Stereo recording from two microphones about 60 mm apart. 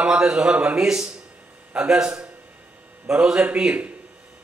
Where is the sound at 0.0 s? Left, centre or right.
Centre.